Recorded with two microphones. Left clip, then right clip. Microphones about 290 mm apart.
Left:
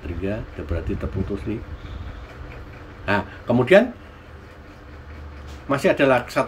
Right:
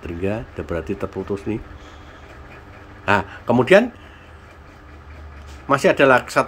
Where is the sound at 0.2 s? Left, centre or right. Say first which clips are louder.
Right 4 dB; centre.